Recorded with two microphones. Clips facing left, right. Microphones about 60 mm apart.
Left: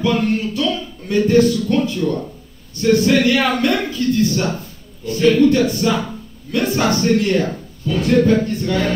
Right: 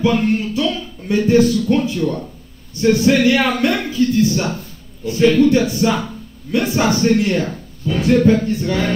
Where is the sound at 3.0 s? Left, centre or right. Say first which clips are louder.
Right 1 dB; centre.